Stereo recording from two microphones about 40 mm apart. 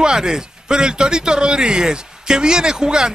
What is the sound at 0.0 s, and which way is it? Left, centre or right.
Speech, centre.